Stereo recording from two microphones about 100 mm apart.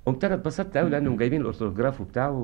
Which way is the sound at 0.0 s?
35° left (ahead or behind).